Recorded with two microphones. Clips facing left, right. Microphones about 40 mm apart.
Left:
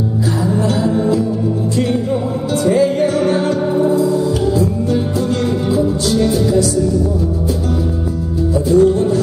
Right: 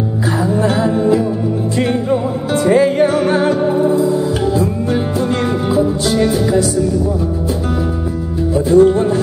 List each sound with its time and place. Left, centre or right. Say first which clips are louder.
0.6 s music: right 1 dB; right
3.7 s music: even; centre
5.7 s music: right 1 dB; right
8.5 s music: right 2 dB; right